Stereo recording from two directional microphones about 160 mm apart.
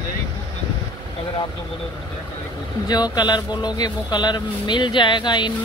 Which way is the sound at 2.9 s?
25° left (ahead or behind).